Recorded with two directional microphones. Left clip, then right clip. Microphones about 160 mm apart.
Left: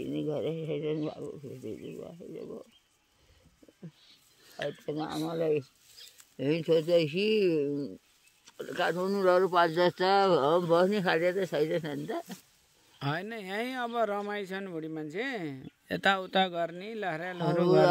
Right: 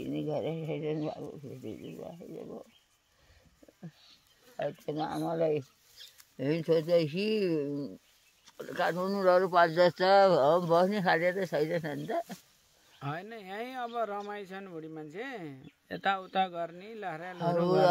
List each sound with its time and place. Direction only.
0.0 s speech: 5° left (ahead or behind)
4.6 s speech: centre (ahead or behind)
6.0 s a sound: 30° right (ahead or behind)
6.3 s speech: 10° left (ahead or behind)
13.0 s speech: 90° left